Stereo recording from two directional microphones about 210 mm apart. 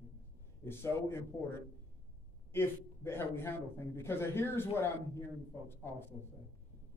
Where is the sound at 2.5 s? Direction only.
10° left (ahead or behind).